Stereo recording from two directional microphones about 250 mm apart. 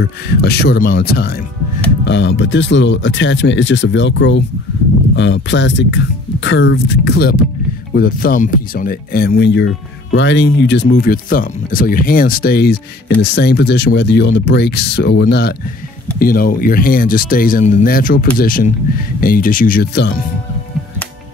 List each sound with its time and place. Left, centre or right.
0.0 s speech: left